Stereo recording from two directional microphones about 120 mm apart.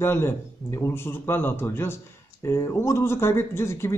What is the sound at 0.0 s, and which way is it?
A man's voice, 20° left (ahead or behind).